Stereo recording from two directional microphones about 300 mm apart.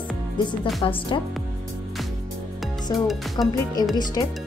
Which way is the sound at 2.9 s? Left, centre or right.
Centre.